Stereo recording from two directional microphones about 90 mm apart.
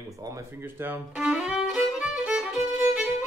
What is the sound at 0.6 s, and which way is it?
Speech, 25° right (ahead or behind).